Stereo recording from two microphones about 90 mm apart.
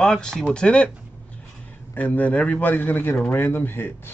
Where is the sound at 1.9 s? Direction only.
15° left (ahead or behind).